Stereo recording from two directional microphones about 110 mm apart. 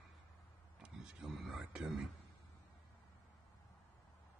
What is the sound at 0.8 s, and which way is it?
Speech, 5° right (ahead or behind).